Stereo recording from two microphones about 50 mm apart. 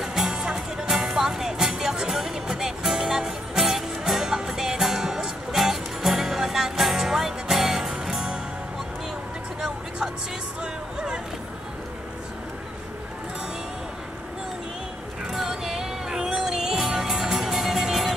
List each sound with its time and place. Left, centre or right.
0.0 s music: centre
9.6 s vehicle: centre
10.6 s music: centre
15.3 s music: centre